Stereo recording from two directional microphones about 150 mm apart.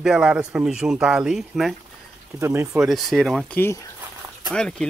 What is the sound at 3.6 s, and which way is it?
Speech, 20° left (ahead or behind).